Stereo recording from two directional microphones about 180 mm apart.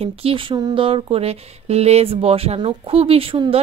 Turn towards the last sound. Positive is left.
turn(degrees=-30)  # may be behind; listen again after turning